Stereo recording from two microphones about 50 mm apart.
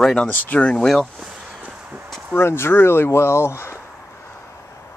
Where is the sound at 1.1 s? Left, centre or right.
Centre.